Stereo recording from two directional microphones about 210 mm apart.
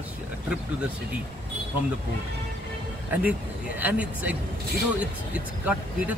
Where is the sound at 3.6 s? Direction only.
5° right (ahead or behind).